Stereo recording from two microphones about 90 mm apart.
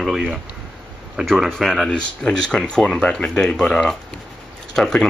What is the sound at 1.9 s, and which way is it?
Speech, 10° left (ahead or behind).